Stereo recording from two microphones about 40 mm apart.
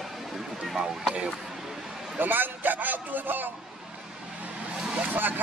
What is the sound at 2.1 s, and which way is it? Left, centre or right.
Speech, right.